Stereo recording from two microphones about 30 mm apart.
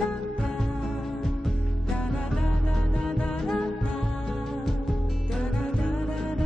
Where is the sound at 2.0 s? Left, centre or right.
Centre.